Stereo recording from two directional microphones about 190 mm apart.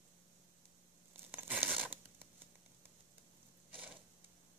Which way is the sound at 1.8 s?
10° right (ahead or behind).